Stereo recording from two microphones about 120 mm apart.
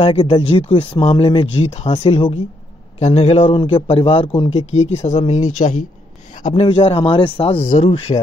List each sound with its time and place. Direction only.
0.0 s speech: 50° left (ahead or behind)
3.0 s a man's voice: 65° left (ahead or behind); by 5.8 s 85° left
6.5 s speech: 50° left (ahead or behind)